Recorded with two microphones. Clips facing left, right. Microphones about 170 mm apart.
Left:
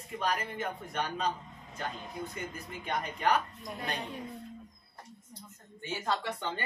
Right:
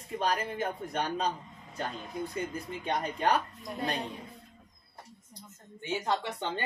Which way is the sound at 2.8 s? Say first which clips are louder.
Right 2 dB; 30° right (ahead or behind).